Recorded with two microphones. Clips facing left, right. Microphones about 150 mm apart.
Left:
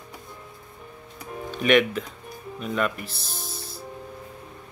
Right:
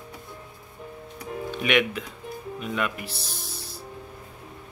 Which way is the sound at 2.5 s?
5° right (ahead or behind).